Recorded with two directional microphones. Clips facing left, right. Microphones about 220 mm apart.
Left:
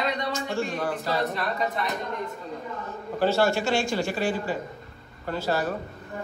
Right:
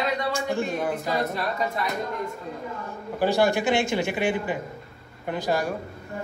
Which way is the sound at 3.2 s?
15° right (ahead or behind).